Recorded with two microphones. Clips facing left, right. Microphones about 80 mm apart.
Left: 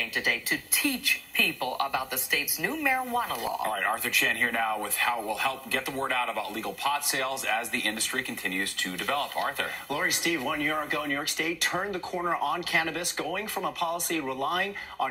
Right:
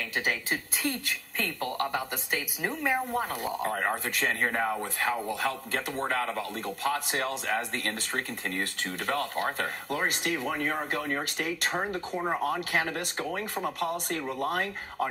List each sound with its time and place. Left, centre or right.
0.2 s a woman's voice: right